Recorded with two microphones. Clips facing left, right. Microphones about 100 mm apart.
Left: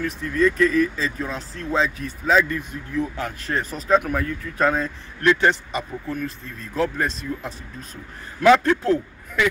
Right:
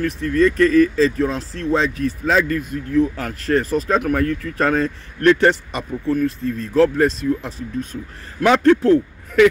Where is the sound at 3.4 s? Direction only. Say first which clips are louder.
Right 11 dB; 75° right (ahead or behind).